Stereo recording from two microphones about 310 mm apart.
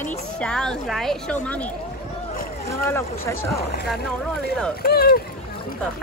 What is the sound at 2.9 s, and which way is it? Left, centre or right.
Speech, centre.